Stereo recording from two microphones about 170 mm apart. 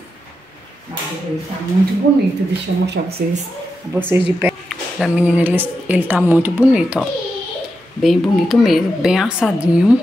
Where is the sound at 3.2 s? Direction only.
60° right (ahead or behind).